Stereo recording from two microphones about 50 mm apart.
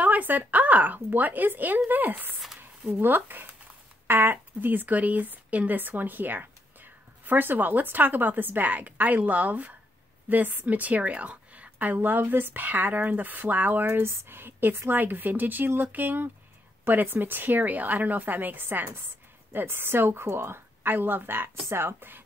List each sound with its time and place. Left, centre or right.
0.0 s speech: right
2.9 s a woman's voice: right
12.6 s a woman's voice: right